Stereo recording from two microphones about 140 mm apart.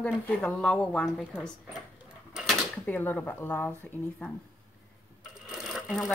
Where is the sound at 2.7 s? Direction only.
10° left (ahead or behind).